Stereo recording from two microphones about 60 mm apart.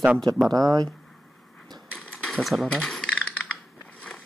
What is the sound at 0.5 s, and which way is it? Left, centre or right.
Speech, right.